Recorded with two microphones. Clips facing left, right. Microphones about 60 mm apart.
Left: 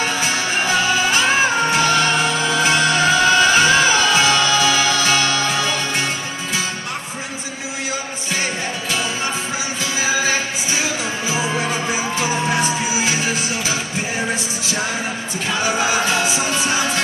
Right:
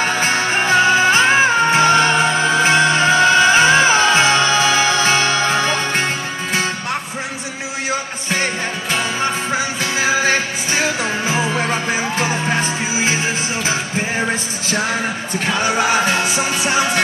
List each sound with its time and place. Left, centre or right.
0.0 s music: right
9.9 s music: right
16.5 s music: centre